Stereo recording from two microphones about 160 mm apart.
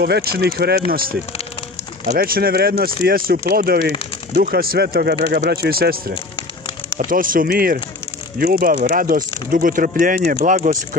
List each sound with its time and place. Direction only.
0.0 s speech: 75° right (ahead or behind)
2.1 s speech: 65° right (ahead or behind)